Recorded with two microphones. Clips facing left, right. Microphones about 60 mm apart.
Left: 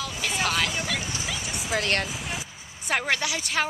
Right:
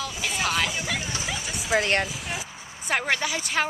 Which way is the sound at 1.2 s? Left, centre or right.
Centre.